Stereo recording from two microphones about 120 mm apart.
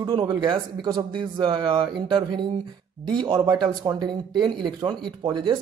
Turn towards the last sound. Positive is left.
turn(degrees=-40)  # may be behind; listen again after turning